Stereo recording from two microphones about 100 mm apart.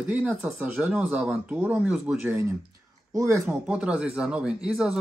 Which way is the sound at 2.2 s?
25° right (ahead or behind).